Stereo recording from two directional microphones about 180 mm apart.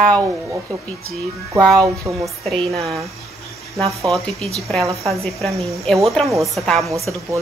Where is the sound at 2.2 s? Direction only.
Centre (ahead or behind).